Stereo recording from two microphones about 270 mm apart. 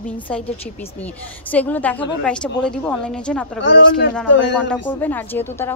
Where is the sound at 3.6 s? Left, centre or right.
Left.